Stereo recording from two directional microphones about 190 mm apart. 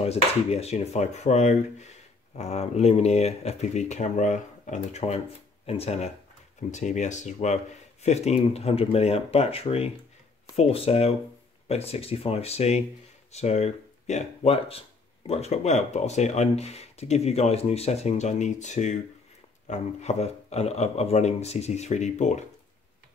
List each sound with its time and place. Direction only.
0.0 s speech: 35° left (ahead or behind)